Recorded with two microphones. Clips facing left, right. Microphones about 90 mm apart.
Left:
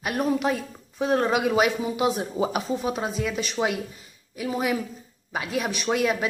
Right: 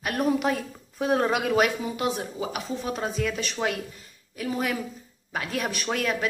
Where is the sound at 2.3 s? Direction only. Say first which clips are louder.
Left 6 dB; 30° left (ahead or behind).